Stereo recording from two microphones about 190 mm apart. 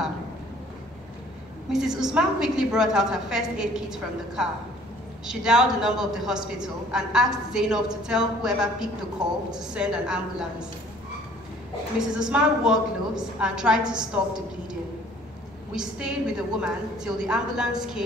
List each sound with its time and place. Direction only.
1.7 s a woman's voice: 5° right (ahead or behind)
12.0 s a woman's voice: 5° right (ahead or behind)
15.7 s a woman's voice: 5° right (ahead or behind)